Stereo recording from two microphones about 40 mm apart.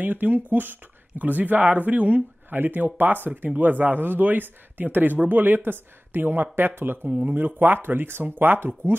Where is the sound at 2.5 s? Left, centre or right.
Right.